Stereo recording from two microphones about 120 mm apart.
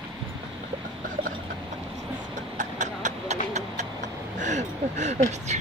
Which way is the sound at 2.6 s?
90° right.